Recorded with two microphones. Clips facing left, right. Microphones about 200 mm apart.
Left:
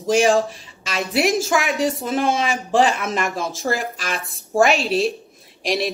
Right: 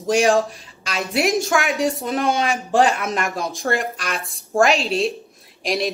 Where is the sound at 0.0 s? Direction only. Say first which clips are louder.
Even; centre (ahead or behind).